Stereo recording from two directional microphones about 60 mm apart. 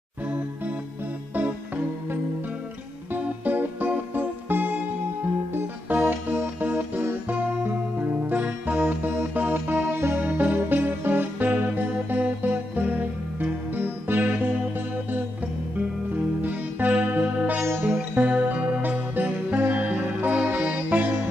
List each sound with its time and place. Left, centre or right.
3.1 s music: right
16.3 s music: right
17.6 s music: right
18.2 s music: right